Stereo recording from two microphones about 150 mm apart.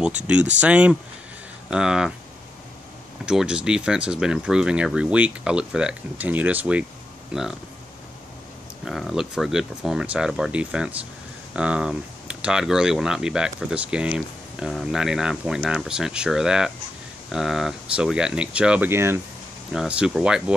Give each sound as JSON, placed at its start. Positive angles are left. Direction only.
{"t": 0.0, "sound": "speech", "side_deg": -10}
{"t": 3.3, "sound": "speech", "side_deg": -5}
{"t": 8.8, "sound": "speech", "side_deg": 0}
{"t": 19.7, "sound": "speech", "side_deg": -5}